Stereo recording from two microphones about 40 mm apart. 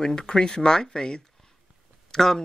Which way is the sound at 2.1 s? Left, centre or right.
Centre.